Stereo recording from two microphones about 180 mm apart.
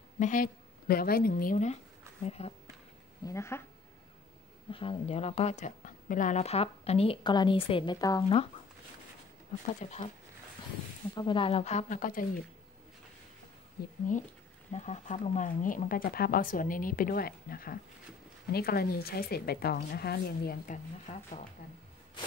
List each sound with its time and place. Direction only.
0.2 s a woman's voice: 50° left (ahead or behind)
3.3 s speech: 15° left (ahead or behind)
4.6 s a woman's voice: 30° left (ahead or behind)
9.8 s a woman's voice: 40° left (ahead or behind)
11.1 s a woman's voice: 25° left (ahead or behind); by 12.3 s 50° left (ahead or behind)
13.8 s speech: 60° left (ahead or behind)
14.7 s speech: 40° left (ahead or behind); by 20.5 s 60° left (ahead or behind)
20.6 s speech: 45° left (ahead or behind)